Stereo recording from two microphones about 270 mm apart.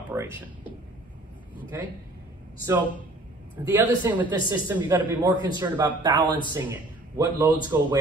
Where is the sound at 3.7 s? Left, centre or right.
Centre.